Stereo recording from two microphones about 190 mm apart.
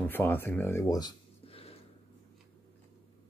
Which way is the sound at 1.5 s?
30° left (ahead or behind).